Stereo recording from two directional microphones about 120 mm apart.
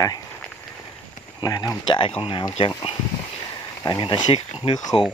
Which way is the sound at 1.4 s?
25° left (ahead or behind).